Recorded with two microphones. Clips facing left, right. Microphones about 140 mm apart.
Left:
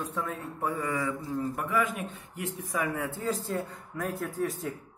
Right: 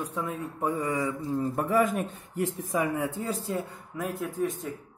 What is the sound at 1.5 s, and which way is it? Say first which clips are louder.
A man's voice: right 7 dB; 35° right (ahead or behind).